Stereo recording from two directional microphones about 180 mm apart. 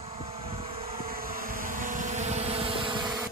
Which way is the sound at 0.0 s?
35° right (ahead or behind).